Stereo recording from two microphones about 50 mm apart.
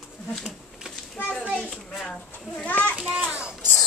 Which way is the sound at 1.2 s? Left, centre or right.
Left.